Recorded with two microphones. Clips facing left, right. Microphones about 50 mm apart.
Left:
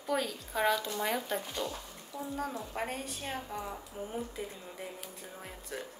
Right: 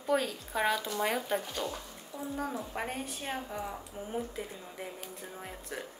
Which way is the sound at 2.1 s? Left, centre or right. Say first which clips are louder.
Right 1 dB; centre.